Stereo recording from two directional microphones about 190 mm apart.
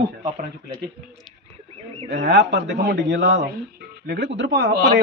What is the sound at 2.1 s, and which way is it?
A man's voice, 70° right (ahead or behind).